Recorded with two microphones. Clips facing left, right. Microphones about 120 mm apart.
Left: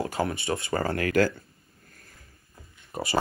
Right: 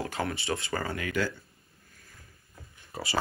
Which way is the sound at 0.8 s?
70° left (ahead or behind).